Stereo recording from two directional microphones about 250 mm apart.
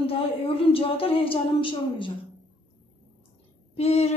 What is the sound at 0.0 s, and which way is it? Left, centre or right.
A woman's voice, left.